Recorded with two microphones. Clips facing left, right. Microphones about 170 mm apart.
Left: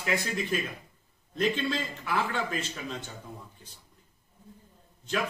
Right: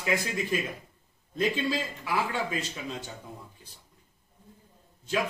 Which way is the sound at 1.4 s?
10° right (ahead or behind).